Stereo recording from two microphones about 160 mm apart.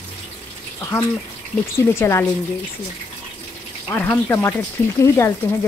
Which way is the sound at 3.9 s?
15° left (ahead or behind).